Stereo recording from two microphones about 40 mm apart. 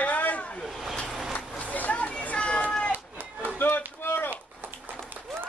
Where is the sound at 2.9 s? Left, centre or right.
Right.